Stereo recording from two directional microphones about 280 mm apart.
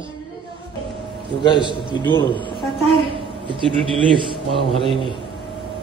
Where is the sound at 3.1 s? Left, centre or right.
Centre.